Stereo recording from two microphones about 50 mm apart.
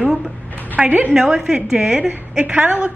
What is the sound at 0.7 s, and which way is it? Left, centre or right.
Speech, right.